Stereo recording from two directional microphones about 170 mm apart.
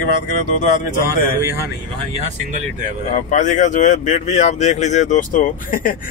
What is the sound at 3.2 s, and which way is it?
Speech, 45° left (ahead or behind).